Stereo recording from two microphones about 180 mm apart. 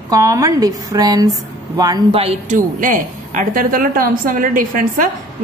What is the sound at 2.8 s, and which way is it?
A woman's voice, 50° right (ahead or behind).